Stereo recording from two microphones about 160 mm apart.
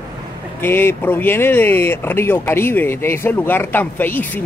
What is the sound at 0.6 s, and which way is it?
Speech, 15° left (ahead or behind).